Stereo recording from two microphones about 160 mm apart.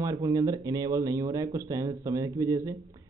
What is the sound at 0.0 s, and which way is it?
A man's voice, 20° right (ahead or behind).